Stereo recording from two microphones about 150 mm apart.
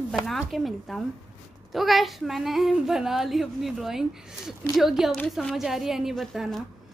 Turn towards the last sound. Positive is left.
turn(degrees=0)  # may be behind; listen again after turning